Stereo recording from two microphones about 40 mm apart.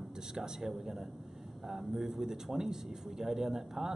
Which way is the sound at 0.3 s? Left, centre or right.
Centre.